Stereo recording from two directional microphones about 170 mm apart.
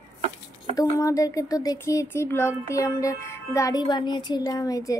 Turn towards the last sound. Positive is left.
turn(degrees=20)  # may be behind; listen again after turning